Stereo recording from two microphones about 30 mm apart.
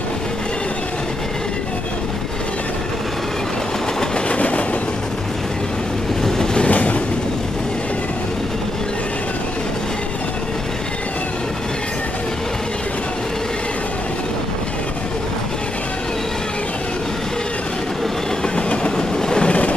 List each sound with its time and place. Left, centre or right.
4.3 s train: left
6.2 s train: centre
6.7 s train: left
18.7 s train: left